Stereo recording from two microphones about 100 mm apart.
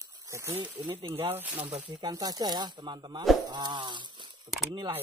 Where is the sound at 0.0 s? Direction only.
30° right (ahead or behind).